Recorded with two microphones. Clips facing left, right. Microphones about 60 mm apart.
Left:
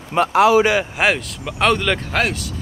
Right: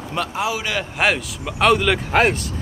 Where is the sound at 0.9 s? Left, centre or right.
Centre.